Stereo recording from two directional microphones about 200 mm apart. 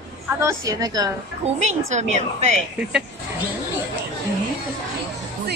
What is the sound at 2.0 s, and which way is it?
Speech, 35° right (ahead or behind).